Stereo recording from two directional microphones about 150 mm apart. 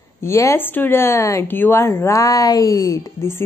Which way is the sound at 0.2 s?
20° left (ahead or behind).